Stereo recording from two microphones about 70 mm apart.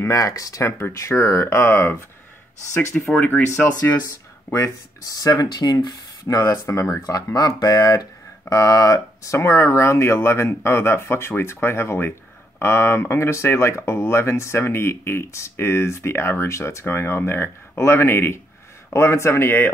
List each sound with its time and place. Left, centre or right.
0.0 s speech: left
0.7 s speech: left
3.2 s speech: left
4.5 s speech: left
5.1 s speech: left
6.2 s speech: left
7.0 s speech: left